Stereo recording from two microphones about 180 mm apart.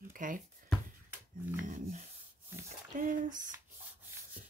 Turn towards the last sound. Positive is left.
turn(degrees=-45)  # may be behind; listen again after turning